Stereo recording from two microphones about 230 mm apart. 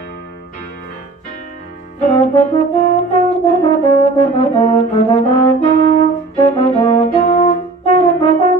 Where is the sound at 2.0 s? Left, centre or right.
Left.